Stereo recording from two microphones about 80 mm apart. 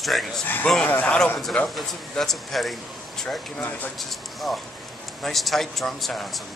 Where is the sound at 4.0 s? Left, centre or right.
Centre.